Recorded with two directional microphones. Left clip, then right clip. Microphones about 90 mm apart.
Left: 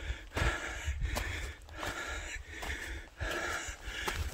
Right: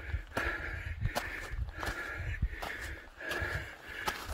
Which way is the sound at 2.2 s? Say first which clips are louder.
Even; 55° left (ahead or behind).